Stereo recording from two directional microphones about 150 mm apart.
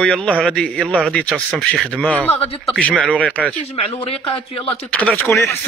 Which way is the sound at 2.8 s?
10° left (ahead or behind).